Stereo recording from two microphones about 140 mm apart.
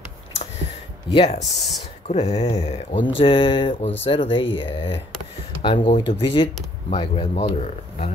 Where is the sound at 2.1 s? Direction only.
50° left (ahead or behind).